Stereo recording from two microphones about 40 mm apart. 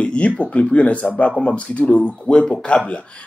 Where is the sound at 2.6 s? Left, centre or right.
Left.